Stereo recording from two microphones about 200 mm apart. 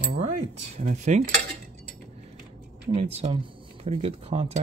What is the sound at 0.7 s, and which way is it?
Cutlery, 35° right (ahead or behind).